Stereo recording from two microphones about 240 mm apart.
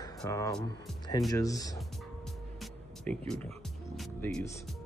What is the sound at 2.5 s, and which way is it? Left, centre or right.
Music, centre.